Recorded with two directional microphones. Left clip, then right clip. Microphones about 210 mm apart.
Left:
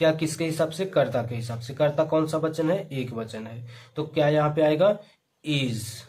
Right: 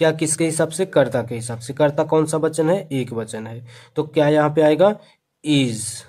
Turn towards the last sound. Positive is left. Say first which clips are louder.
# right 8 dB
turn(degrees=-55)  # may be behind; listen again after turning